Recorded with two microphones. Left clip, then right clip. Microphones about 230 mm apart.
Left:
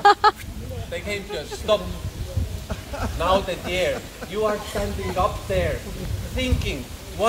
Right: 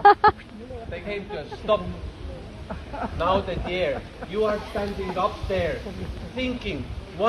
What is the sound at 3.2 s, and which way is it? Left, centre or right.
A man's voice, centre.